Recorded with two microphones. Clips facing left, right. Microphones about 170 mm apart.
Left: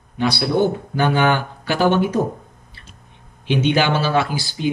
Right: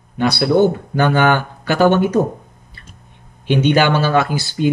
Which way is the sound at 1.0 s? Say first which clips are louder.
Right 3 dB; 55° right (ahead or behind).